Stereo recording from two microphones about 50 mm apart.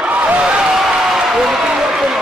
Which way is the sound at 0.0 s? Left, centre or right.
Right.